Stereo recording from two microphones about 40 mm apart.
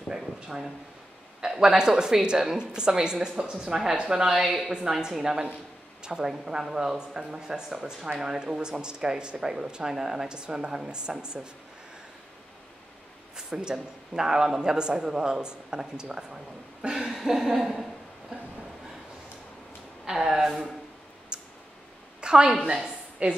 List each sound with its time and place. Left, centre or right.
0.1 s a woman's voice: centre
13.4 s a woman's voice: centre
16.9 s a sound: centre
20.1 s a woman's voice: centre
21.3 s a sound: right
22.2 s a woman's voice: centre